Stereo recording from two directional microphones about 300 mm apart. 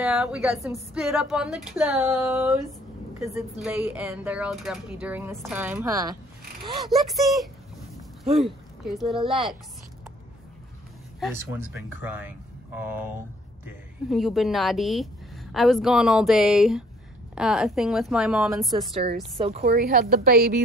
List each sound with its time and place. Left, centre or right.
0.0 s a woman's voice: centre
3.6 s a woman's voice: centre
6.6 s a sound: centre
6.9 s a woman's voice: centre
8.3 s speech: centre
8.8 s a woman's voice: centre
11.1 s a woman's voice: centre
19.3 s speech: centre
19.6 s speech: right